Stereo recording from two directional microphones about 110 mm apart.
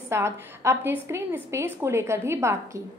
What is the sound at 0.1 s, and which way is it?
A woman's voice, 25° right (ahead or behind).